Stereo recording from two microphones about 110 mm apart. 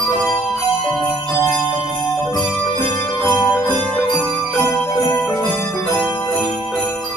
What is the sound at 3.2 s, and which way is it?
Music, 35° left (ahead or behind).